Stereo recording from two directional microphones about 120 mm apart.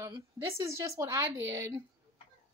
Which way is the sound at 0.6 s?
25° right (ahead or behind).